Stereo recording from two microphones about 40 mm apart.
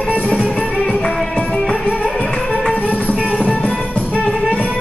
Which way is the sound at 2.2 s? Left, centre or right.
Centre.